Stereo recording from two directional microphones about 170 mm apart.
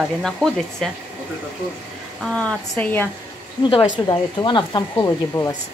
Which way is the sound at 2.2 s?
5° left (ahead or behind).